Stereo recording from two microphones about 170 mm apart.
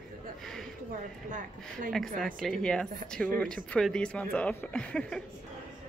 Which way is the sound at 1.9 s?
5° left (ahead or behind).